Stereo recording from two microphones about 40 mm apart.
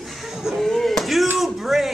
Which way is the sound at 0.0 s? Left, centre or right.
Centre.